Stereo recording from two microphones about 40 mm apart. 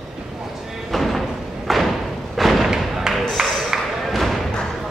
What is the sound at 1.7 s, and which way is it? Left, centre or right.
Thump, centre.